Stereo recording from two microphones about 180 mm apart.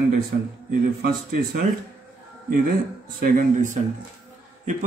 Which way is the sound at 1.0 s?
55° right (ahead or behind).